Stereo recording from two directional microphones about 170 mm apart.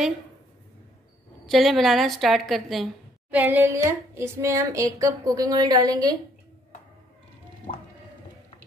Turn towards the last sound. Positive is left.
turn(degrees=35)  # may be behind; listen again after turning